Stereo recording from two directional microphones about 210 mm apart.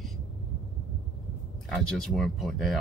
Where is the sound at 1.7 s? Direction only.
Centre (ahead or behind).